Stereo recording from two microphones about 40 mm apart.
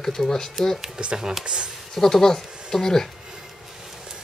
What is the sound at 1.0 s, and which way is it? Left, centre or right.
Speech, right.